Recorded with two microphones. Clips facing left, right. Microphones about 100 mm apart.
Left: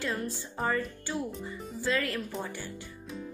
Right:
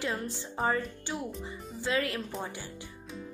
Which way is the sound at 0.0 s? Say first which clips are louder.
Even; 20° right (ahead or behind).